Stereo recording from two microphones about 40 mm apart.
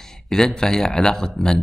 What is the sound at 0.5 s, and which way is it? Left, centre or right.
Speech, centre.